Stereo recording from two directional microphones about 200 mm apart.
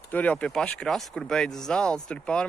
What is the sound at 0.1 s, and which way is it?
Speech, 5° left (ahead or behind).